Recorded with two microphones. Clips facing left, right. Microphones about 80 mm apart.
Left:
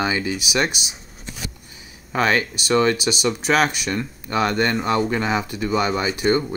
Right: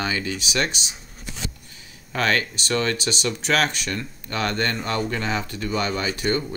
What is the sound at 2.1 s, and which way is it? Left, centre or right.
Speech, centre.